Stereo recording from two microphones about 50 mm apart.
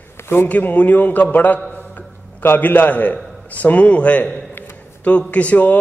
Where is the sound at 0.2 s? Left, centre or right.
Left.